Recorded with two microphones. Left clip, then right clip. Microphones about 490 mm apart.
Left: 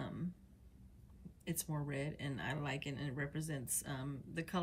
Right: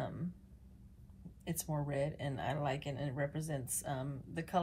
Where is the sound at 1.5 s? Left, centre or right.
Centre.